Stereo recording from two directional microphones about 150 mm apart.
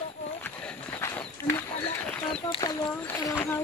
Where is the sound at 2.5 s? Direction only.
25° left (ahead or behind).